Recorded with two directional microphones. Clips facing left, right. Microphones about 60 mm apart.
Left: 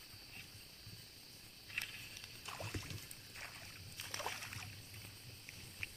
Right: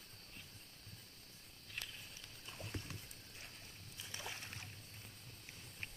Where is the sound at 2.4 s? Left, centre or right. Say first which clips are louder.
Left 4 dB; left.